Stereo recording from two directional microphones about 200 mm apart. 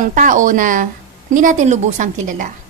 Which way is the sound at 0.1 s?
40° right (ahead or behind).